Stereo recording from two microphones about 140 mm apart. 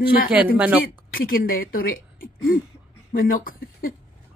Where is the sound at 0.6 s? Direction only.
10° right (ahead or behind).